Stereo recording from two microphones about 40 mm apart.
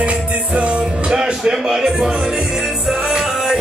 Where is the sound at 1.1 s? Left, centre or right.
Centre.